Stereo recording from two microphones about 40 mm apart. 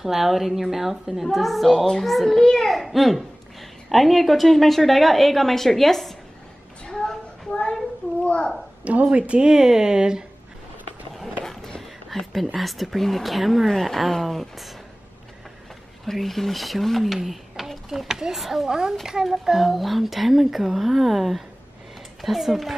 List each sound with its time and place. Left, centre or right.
0.0 s a woman's voice: centre
2.6 s a woman's voice: centre
8.2 s a sound: left
8.8 s speech: right
9.5 s speech: centre
11.8 s a sound: centre
12.5 s a woman's voice: centre
16.1 s a woman's voice: centre
18.7 s a woman's voice: centre